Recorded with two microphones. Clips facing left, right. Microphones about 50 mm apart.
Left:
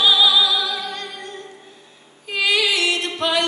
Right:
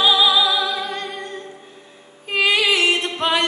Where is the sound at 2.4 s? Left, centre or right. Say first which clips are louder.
Right 2 dB; right.